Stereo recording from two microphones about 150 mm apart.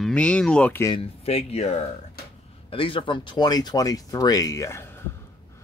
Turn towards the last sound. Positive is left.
turn(degrees=20)  # may be behind; listen again after turning